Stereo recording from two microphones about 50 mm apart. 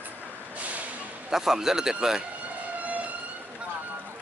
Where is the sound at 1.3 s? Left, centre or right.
Centre.